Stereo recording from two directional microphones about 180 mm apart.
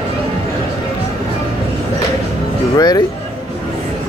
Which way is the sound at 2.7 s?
20° left (ahead or behind).